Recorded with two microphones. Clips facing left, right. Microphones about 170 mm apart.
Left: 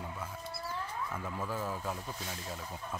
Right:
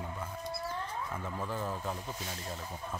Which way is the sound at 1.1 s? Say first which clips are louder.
Even; 5° left (ahead or behind).